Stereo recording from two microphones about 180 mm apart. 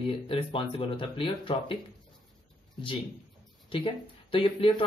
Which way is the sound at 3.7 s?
30° left (ahead or behind).